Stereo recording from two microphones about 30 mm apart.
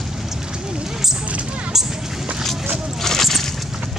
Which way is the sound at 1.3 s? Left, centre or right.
Right.